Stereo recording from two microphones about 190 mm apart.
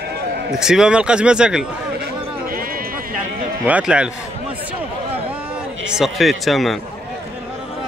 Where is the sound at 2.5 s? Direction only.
50° right (ahead or behind).